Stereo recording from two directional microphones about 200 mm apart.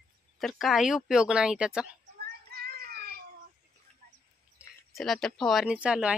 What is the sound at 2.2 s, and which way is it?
Child singing, 50° right (ahead or behind).